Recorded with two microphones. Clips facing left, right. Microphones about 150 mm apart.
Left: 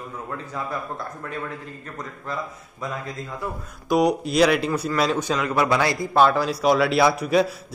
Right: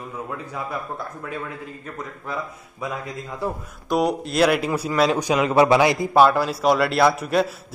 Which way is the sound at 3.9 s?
Centre (ahead or behind).